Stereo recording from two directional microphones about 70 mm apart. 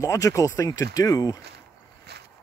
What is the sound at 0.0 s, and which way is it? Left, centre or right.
Speech, left.